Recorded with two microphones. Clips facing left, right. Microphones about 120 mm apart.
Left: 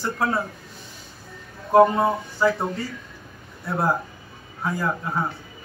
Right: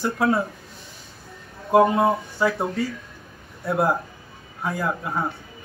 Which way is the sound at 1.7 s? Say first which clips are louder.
Left 1 dB; centre (ahead or behind).